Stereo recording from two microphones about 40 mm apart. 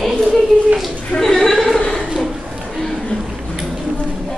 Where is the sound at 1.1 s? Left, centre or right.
Centre.